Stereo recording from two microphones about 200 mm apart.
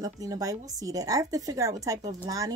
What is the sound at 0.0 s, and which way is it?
A woman's voice, 20° right (ahead or behind).